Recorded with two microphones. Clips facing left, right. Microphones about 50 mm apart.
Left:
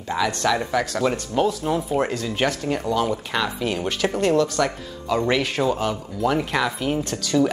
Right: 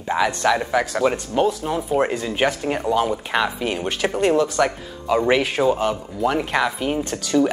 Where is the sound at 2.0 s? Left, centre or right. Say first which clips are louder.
Right 2 dB; centre.